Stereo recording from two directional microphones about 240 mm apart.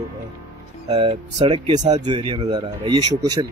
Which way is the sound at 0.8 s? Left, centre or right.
Right.